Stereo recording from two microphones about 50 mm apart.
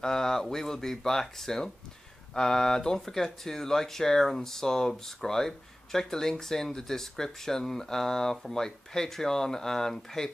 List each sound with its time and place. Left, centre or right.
0.0 s speech: centre